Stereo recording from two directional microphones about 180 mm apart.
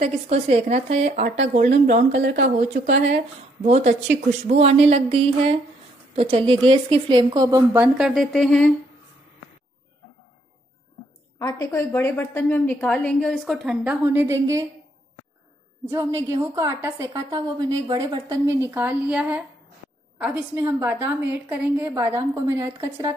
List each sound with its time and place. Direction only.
0.0 s a woman's voice: 35° right (ahead or behind)
7.8 s speech: 5° right (ahead or behind)
11.3 s a woman's voice: 20° left (ahead or behind)
13.8 s a woman's voice: 15° right (ahead or behind)
15.8 s a woman's voice: 20° right (ahead or behind)